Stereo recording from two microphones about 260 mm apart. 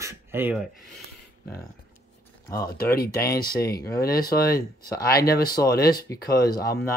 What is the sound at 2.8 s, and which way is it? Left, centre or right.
Speech, left.